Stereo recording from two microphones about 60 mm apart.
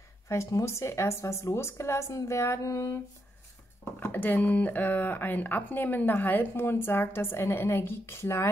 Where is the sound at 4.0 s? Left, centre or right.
Left.